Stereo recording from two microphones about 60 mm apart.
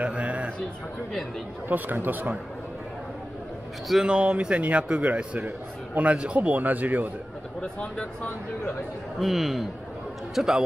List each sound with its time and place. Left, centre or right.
0.0 s a sound: right
1.7 s speech: right
4.0 s speech: centre
7.6 s speech: left
9.2 s a man's voice: centre